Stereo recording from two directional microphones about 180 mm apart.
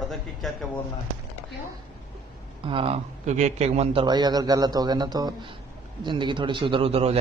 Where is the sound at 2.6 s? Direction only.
30° right (ahead or behind).